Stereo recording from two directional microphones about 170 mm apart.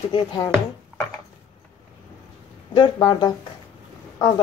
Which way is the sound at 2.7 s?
25° left (ahead or behind).